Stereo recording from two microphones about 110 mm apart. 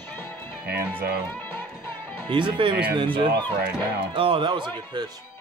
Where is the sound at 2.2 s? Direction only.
45° right (ahead or behind).